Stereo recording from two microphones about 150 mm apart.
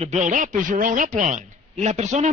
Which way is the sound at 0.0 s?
50° right (ahead or behind).